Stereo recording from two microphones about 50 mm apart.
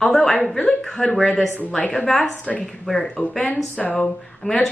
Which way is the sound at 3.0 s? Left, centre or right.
Centre.